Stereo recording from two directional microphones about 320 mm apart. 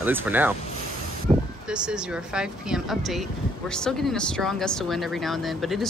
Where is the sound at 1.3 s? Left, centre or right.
Centre.